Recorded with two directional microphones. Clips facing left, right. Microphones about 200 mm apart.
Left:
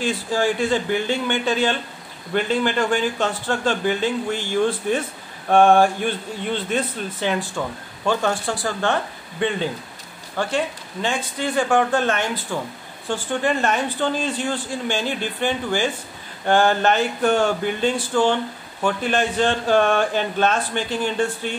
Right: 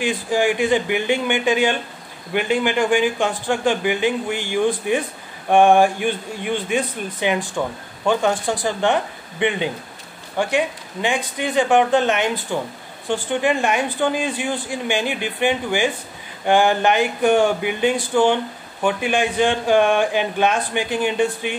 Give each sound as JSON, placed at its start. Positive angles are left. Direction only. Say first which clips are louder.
{"t": 0.0, "sound": "speech", "louder": "right 2 dB", "side_deg": -15}